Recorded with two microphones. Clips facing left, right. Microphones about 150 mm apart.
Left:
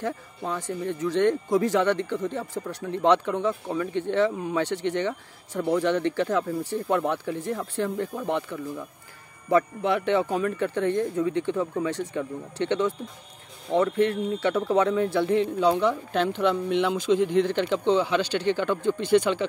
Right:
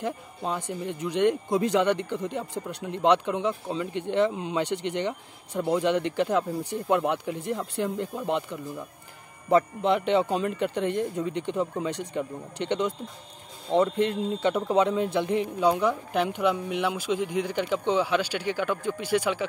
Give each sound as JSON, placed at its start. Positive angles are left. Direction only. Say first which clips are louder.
{"t": 0.0, "sound": "speech", "louder": "even", "side_deg": -15}
{"t": 14.5, "sound": "speech", "louder": "left 1 dB", "side_deg": -15}